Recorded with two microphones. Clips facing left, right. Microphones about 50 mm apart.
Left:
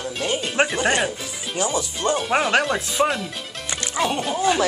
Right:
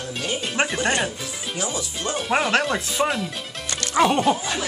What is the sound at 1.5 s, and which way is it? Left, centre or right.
Speech, left.